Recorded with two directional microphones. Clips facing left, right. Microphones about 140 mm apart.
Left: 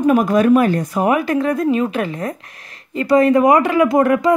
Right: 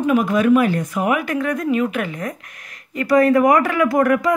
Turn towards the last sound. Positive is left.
turn(degrees=25)  # may be behind; listen again after turning